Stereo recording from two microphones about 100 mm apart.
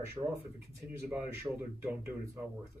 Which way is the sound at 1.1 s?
20° right (ahead or behind).